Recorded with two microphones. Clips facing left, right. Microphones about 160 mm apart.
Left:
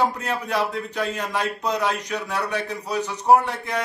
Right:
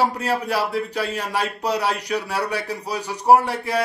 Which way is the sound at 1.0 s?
35° right (ahead or behind).